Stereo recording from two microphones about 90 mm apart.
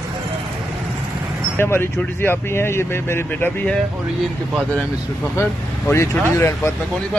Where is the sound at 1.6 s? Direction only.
25° left (ahead or behind).